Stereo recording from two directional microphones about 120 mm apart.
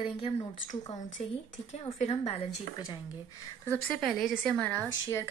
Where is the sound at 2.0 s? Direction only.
60° left (ahead or behind).